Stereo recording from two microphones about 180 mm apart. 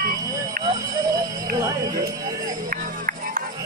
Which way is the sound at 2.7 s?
50° right (ahead or behind).